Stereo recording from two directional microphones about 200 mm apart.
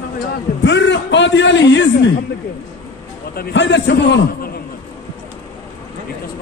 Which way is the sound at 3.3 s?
60° left (ahead or behind).